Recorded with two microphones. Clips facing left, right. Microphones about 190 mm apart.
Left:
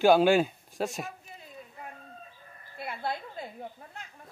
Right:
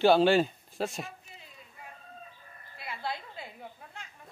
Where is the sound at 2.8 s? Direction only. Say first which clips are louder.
Left 3 dB; 50° left (ahead or behind).